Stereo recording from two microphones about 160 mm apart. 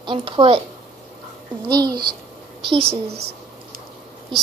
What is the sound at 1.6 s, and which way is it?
A woman's voice, 25° right (ahead or behind).